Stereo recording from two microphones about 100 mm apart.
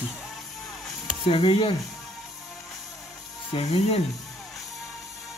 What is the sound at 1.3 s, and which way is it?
Speech, 65° left (ahead or behind).